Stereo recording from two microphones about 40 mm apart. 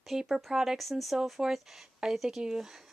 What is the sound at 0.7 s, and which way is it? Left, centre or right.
Speech, centre.